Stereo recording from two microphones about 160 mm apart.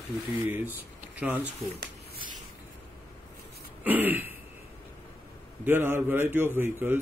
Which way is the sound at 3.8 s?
10° right (ahead or behind).